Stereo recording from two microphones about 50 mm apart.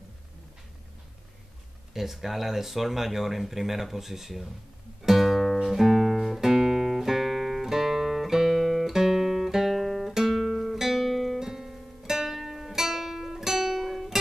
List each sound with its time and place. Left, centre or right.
2.0 s speech: centre
5.0 s music: centre